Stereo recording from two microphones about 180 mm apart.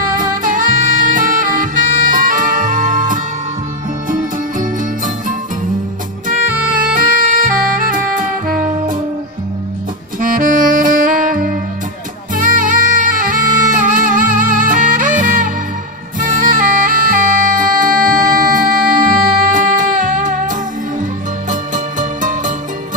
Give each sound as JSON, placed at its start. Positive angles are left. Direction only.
{"t": 0.0, "sound": "music", "side_deg": -50}
{"t": 7.0, "sound": "music", "side_deg": -50}
{"t": 7.9, "sound": "saxophone", "side_deg": -50}
{"t": 10.2, "sound": "saxophone", "side_deg": -50}
{"t": 12.4, "sound": "music", "side_deg": -50}